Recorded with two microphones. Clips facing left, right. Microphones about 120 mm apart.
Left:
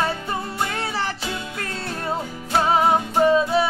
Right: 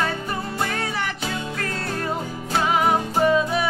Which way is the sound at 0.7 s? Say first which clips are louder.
Left 1 dB; 30° left (ahead or behind).